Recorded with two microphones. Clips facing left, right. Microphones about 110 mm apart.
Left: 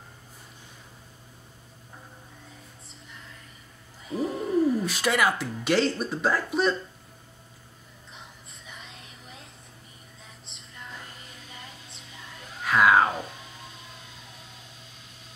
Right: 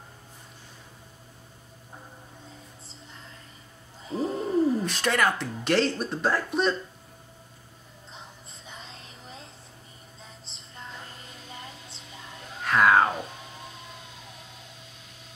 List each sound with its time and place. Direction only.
4.1 s a sound: 30° right (ahead or behind)
4.8 s speech: 5° left (ahead or behind)
12.6 s screaming: centre (ahead or behind)